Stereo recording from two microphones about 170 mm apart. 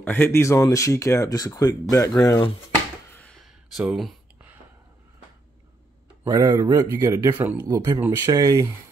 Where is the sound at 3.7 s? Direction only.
Centre (ahead or behind).